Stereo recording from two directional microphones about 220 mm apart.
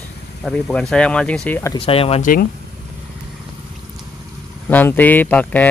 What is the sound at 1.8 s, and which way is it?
Speech, 25° left (ahead or behind).